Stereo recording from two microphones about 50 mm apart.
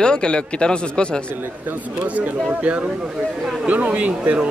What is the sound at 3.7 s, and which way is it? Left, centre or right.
Speech, right.